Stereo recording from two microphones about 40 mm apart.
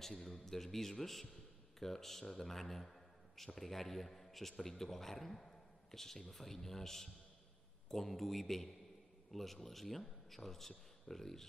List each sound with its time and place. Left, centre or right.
0.0 s a man's voice: centre